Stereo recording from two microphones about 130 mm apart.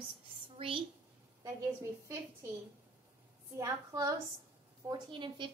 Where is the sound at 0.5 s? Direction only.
45° right (ahead or behind).